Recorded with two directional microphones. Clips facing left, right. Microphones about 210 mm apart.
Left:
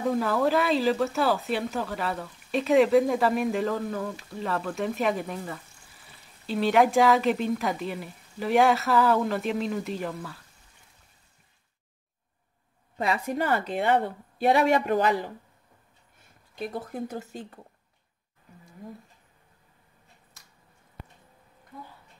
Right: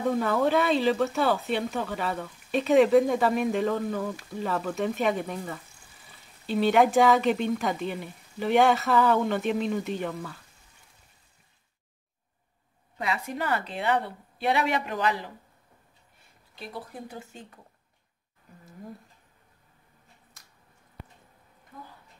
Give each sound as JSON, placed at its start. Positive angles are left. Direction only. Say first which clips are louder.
{"t": 0.0, "sound": "speech", "louder": "even", "side_deg": 0}
{"t": 12.9, "sound": "a woman's voice", "louder": "left 4 dB", "side_deg": 40}
{"t": 16.5, "sound": "speech", "louder": "left 6 dB", "side_deg": 45}